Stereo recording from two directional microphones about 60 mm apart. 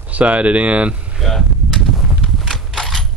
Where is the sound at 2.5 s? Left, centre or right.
Centre.